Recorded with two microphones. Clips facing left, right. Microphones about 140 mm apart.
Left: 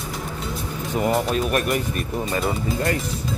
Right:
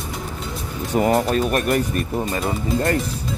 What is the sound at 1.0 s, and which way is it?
Speech, centre (ahead or behind).